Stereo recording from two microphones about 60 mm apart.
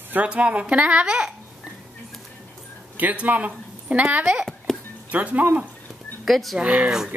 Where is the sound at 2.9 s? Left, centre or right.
Right.